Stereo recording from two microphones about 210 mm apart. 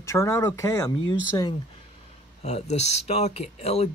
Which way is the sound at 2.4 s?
30° left (ahead or behind).